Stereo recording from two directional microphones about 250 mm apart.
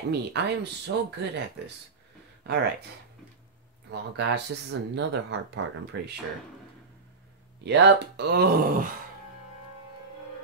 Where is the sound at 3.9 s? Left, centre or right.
Right.